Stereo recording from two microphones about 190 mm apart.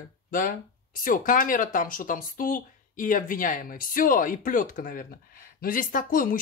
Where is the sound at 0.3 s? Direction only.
45° left (ahead or behind).